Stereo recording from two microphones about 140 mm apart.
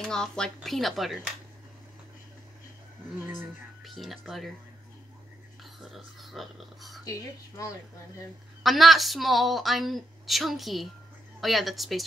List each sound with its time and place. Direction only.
0.0 s a woman's voice: 5° left (ahead or behind)
3.8 s a woman's voice: centre (ahead or behind)
5.6 s speech: centre (ahead or behind)
7.1 s speech: 25° left (ahead or behind)
8.6 s a woman's voice: centre (ahead or behind)